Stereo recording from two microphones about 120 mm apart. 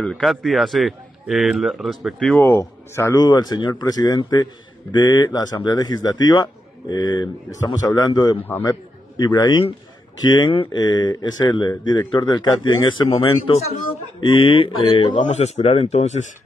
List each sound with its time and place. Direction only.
0.0 s a man's voice: centre (ahead or behind); by 8.4 s 35° left (ahead or behind)
8.4 s a man's voice: 15° left (ahead or behind)
8.6 s a man's voice: 35° left (ahead or behind)
14.2 s mantra: 45° left (ahead or behind)
15.1 s speech: 80° left